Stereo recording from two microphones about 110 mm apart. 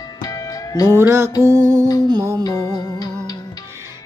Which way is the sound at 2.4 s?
30° left (ahead or behind).